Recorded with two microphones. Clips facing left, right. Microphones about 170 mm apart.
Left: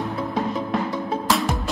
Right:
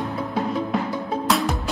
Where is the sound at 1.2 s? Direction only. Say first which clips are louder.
Right 1 dB; centre (ahead or behind).